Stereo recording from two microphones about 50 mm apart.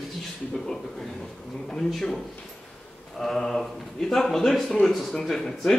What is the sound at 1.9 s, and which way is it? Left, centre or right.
Speech, centre.